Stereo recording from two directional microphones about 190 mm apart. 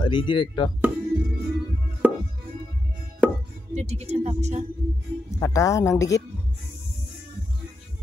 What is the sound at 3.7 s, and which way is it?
Speech, 35° right (ahead or behind).